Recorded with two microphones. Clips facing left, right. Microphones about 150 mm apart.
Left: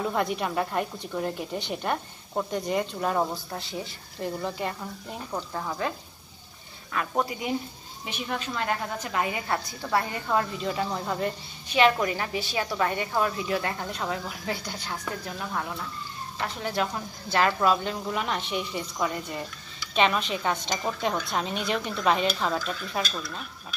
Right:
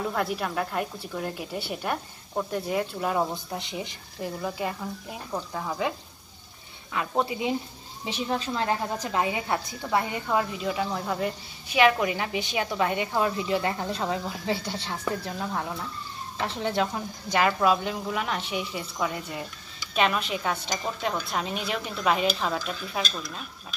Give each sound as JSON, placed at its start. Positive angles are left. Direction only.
{"t": 0.0, "sound": "speech", "side_deg": 0}
{"t": 3.5, "sound": "a woman's voice", "side_deg": -20}
{"t": 4.2, "sound": "speech", "side_deg": -5}
{"t": 6.9, "sound": "a woman's voice", "side_deg": -20}
{"t": 10.3, "sound": "a woman's voice", "side_deg": -5}
{"t": 17.5, "sound": "speech", "side_deg": -5}